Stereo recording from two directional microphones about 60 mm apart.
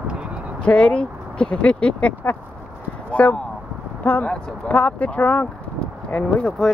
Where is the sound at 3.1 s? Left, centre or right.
Left.